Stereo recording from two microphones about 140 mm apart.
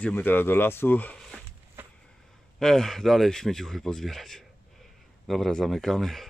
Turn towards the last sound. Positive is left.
turn(degrees=0)  # may be behind; listen again after turning